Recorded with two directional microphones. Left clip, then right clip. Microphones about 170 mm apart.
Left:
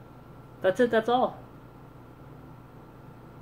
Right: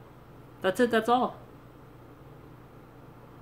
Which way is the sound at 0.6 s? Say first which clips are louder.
Left 2 dB; 15° right (ahead or behind).